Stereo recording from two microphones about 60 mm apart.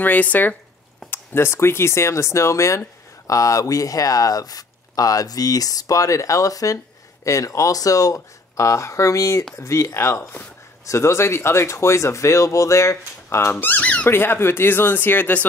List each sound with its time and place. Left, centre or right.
0.0 s speech: left
1.1 s speech: left
13.6 s speech: left